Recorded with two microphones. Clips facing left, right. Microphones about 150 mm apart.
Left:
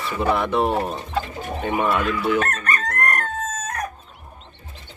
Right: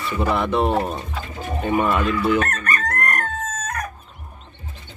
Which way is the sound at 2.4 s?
25° left (ahead or behind).